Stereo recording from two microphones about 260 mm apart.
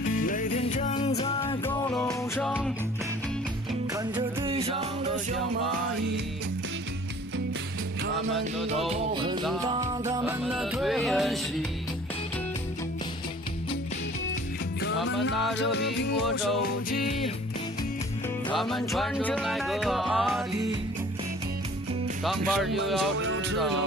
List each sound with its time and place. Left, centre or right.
0.3 s music: left
1.7 s music: centre
4.2 s music: centre
8.9 s music: centre
10.4 s music: centre
15.5 s music: left
18.6 s music: centre
22.5 s music: centre
23.1 s music: right